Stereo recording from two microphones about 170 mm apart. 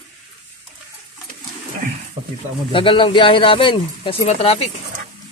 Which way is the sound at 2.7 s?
30° left (ahead or behind).